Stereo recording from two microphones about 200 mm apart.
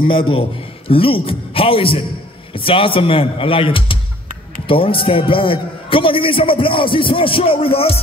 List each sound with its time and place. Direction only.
0.0 s a man's voice: 25° left (ahead or behind)